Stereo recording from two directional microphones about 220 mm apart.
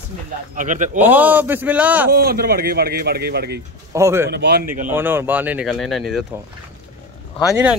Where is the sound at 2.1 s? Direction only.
45° right (ahead or behind).